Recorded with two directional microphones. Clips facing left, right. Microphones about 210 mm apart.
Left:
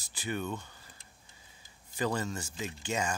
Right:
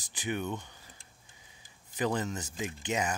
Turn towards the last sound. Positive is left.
turn(degrees=-20)  # may be behind; listen again after turning